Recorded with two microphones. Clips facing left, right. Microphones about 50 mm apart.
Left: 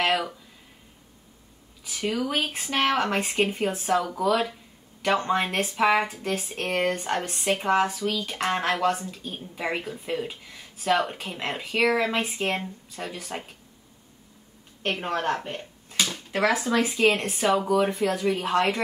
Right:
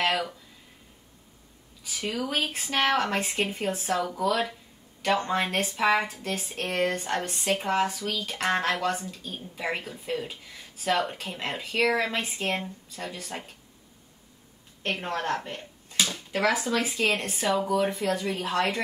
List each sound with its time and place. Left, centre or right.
1.9 s speech: centre
12.4 s speech: centre
14.9 s speech: left
15.9 s speech: centre